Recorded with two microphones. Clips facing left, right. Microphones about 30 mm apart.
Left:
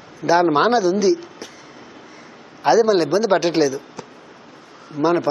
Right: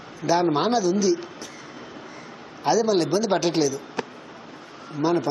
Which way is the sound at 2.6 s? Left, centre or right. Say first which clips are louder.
Left 6 dB; centre.